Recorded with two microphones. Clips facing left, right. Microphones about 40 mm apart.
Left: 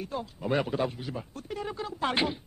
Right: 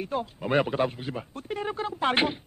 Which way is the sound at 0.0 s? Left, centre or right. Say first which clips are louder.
Right 4 dB; right.